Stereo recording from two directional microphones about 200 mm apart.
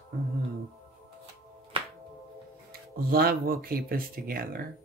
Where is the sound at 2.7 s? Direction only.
50° right (ahead or behind).